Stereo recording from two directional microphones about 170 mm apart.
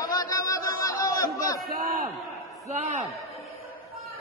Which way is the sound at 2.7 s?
45° right (ahead or behind).